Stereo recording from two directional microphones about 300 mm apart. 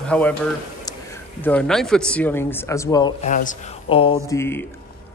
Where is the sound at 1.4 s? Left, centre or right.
Centre; by 4.1 s left.